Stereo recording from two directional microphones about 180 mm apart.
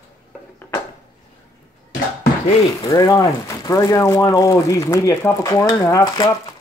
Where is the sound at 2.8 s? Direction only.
20° left (ahead or behind).